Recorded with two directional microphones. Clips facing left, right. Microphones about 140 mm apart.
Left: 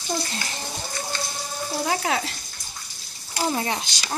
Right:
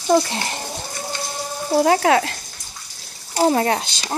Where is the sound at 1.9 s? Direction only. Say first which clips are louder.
Right 8 dB; 70° right (ahead or behind).